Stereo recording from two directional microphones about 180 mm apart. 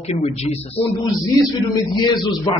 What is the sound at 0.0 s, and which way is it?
Speech, 35° left (ahead or behind).